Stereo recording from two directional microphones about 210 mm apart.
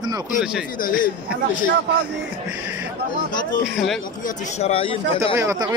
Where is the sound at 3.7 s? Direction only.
Centre (ahead or behind).